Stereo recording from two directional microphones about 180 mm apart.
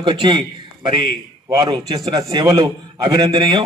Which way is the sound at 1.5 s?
20° right (ahead or behind).